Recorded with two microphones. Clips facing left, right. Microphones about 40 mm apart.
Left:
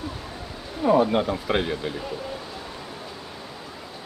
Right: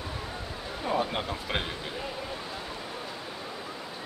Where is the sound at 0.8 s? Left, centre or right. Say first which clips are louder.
Left 10 dB; centre.